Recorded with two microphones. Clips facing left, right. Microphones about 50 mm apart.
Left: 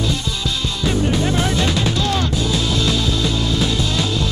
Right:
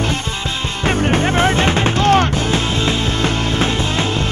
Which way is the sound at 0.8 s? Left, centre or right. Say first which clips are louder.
Right 3 dB; right.